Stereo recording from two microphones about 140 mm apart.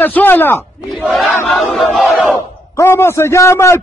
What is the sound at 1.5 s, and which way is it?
Chant, centre (ahead or behind).